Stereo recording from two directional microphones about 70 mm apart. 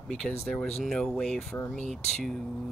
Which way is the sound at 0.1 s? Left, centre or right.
Centre.